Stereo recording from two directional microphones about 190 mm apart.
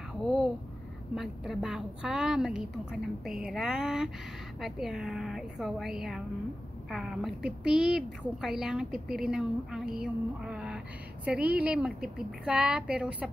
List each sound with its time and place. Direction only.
0.2 s a woman's voice: centre (ahead or behind)